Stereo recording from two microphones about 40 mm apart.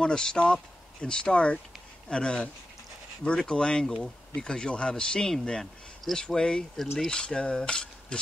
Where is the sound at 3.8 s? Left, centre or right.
Centre.